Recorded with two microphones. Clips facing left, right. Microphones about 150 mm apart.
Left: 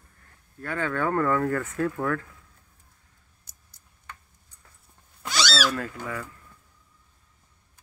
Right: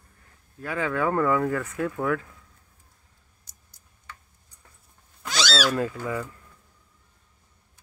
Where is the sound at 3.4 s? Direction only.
60° left (ahead or behind).